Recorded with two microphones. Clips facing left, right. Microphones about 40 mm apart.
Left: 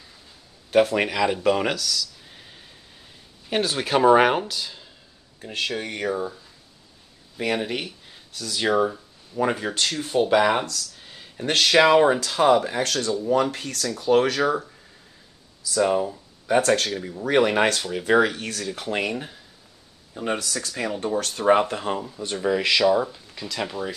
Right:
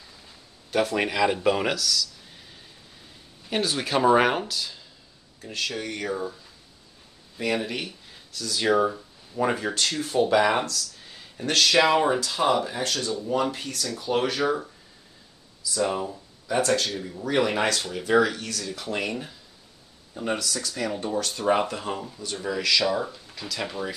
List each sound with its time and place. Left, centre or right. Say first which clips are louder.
0.7 s speech: left 5 dB; centre
1.0 s speech: left 1 dB; centre
3.4 s speech: left 2 dB; centre
5.4 s speech: left 3 dB; left
7.3 s speech: left 2 dB; centre
8.7 s speech: left 1 dB; centre
11.4 s speech: left 3 dB; left
12.2 s speech: left 5 dB; left
15.9 s speech: left 6 dB; centre
16.4 s speech: left 4 dB; left
20.3 s speech: left 1 dB; left
21.9 s speech: left 4 dB; centre
22.2 s speech: left 6 dB; left
23.5 s speech: left 2 dB; centre